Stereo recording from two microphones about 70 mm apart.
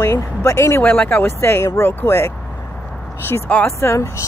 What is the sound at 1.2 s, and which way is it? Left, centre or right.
Speech, left.